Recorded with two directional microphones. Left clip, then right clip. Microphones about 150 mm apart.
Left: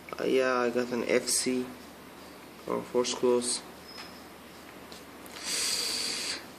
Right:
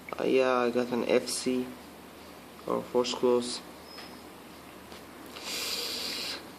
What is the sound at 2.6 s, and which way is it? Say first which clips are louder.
Speech: right 1 dB; 5° right (ahead or behind).